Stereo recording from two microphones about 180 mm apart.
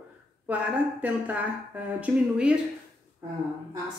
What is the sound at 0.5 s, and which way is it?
Speech, 10° right (ahead or behind).